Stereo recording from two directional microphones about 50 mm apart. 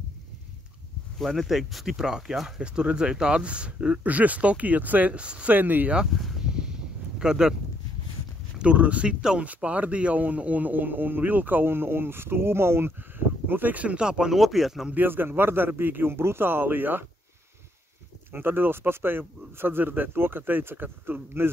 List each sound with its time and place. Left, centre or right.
1.1 s speech: centre
2.6 s speech: right
5.5 s a man's voice: right
6.1 s a sound: centre
6.4 s a sound: centre
7.2 s speech: centre
8.5 s a man's voice: right
13.5 s a man's voice: right
13.9 s speech: centre
14.3 s speech: centre
15.0 s speech: right
18.3 s speech: right